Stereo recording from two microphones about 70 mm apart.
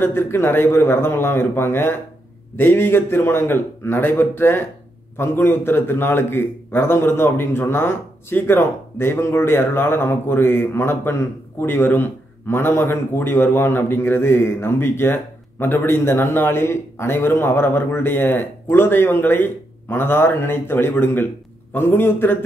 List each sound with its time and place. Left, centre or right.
0.0 s a man's voice: left